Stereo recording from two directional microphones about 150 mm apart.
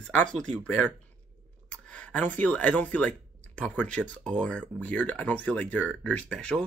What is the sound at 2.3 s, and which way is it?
Speech, 10° left (ahead or behind).